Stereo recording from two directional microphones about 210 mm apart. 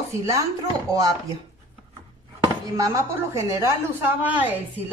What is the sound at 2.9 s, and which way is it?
A woman's voice, 15° right (ahead or behind).